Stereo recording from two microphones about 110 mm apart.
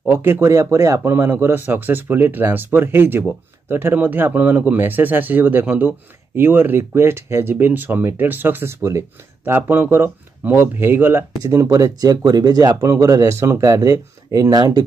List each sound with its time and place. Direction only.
0.0 s speech: 20° right (ahead or behind)
11.3 s speech: 30° right (ahead or behind)
12.6 s speech: 25° right (ahead or behind)